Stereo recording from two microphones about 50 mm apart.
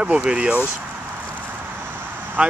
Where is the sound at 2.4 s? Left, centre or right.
Right.